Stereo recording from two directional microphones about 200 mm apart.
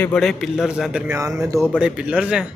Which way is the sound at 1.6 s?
Centre (ahead or behind).